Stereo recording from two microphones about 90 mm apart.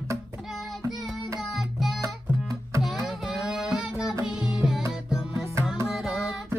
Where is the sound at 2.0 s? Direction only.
40° right (ahead or behind).